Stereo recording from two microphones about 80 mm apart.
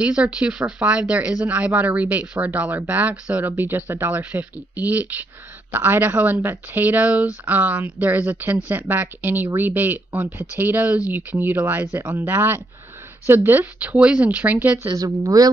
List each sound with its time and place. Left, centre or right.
0.0 s speech: centre
13.7 s speech: centre
15.0 s a woman's voice: right